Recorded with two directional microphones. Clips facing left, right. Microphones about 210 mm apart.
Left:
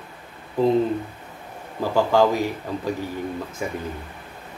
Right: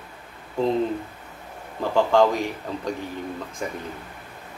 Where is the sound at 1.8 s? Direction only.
5° left (ahead or behind).